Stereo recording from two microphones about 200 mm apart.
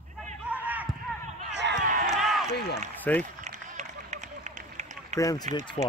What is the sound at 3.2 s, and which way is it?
Run, 35° right (ahead or behind).